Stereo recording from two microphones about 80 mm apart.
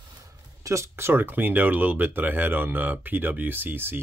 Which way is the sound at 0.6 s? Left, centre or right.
Right.